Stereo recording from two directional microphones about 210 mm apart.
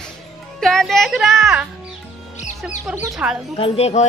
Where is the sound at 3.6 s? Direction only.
30° left (ahead or behind).